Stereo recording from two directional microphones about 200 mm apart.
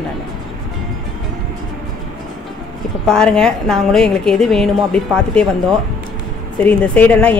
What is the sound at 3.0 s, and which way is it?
Speech, 5° left (ahead or behind).